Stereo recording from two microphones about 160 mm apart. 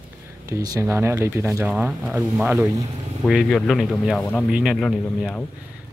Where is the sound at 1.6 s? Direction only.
5° right (ahead or behind).